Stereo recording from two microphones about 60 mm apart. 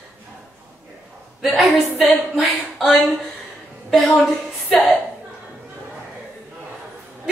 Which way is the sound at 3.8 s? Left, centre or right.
Centre.